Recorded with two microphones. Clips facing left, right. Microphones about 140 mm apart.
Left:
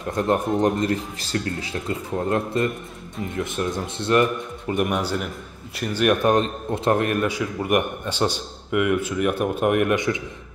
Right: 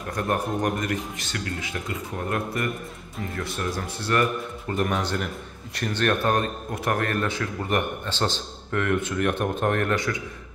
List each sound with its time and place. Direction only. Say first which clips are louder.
0.2 s a man's voice: left 5 dB; 20° left (ahead or behind)